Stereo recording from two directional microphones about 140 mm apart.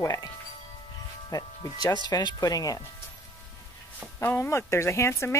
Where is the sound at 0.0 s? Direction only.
25° left (ahead or behind).